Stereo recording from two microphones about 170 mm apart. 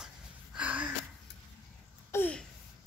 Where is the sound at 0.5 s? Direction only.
10° right (ahead or behind).